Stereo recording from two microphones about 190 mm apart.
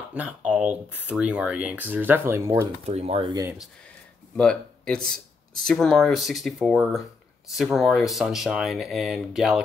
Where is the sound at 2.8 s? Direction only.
35° right (ahead or behind).